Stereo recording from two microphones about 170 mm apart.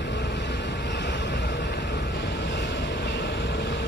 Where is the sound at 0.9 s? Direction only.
90° left.